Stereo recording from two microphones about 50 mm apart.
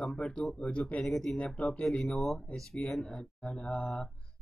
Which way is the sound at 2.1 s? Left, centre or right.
Centre.